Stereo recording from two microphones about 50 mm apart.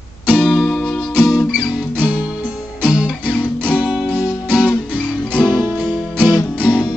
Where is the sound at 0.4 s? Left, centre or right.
Centre.